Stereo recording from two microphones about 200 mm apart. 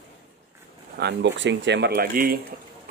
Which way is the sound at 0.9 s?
60° right (ahead or behind).